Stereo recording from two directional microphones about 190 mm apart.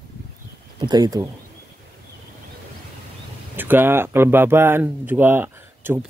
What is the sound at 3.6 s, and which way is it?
Speech, 10° right (ahead or behind).